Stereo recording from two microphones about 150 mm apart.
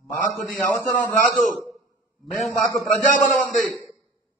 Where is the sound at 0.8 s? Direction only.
20° left (ahead or behind).